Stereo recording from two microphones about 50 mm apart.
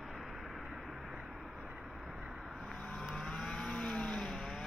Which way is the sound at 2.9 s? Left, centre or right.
Centre.